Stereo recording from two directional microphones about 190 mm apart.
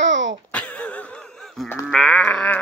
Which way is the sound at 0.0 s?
75° right (ahead or behind).